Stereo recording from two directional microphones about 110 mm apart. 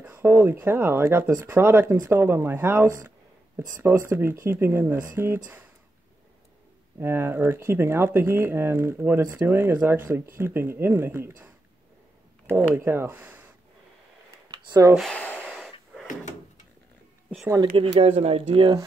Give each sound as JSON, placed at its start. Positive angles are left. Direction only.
{"t": 0.1, "sound": "speech", "side_deg": -20}
{"t": 7.0, "sound": "speech", "side_deg": -20}
{"t": 12.7, "sound": "speech", "side_deg": -20}
{"t": 14.5, "sound": "speech", "side_deg": -30}
{"t": 15.1, "sound": "gasp", "side_deg": 15}
{"t": 15.5, "sound": "wheeze", "side_deg": 0}
{"t": 17.6, "sound": "speech", "side_deg": -40}
{"t": 18.0, "sound": "speech", "side_deg": -65}